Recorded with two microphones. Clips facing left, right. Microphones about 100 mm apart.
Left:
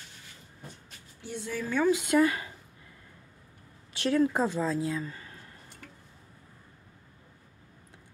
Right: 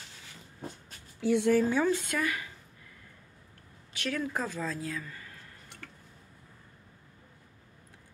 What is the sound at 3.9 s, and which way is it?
Speech, 30° left (ahead or behind).